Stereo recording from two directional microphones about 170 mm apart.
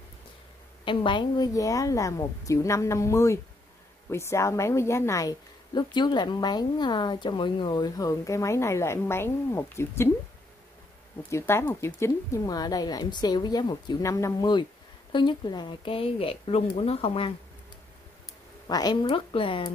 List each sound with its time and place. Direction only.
0.8 s a woman's voice: 30° left (ahead or behind)
11.2 s a woman's voice: 15° left (ahead or behind); by 17.3 s 35° left (ahead or behind)
18.7 s a woman's voice: 25° left (ahead or behind)